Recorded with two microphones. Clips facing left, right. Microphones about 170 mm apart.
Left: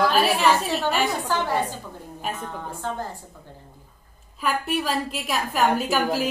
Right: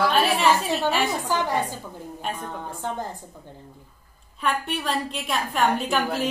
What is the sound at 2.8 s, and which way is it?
Speech, 15° right (ahead or behind).